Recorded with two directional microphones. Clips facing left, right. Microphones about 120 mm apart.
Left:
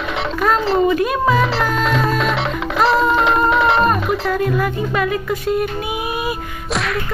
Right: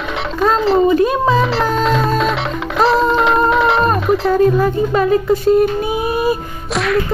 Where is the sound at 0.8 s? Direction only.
30° right (ahead or behind).